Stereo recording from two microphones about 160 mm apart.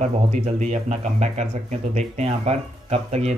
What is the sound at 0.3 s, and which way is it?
Speech, 45° right (ahead or behind).